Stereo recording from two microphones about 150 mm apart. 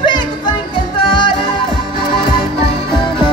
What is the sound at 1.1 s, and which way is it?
Music, 35° left (ahead or behind).